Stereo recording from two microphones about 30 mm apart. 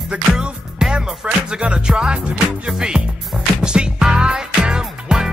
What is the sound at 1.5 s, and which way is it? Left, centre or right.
Music, right.